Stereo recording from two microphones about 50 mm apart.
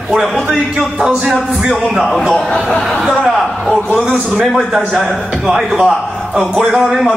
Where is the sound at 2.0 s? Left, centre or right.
Centre.